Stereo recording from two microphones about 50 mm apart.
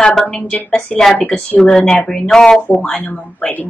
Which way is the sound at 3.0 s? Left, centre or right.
Left.